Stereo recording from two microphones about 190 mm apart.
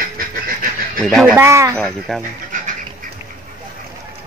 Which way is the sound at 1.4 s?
15° right (ahead or behind).